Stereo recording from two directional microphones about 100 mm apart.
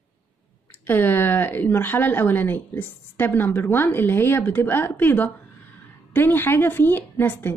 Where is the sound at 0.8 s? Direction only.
20° left (ahead or behind).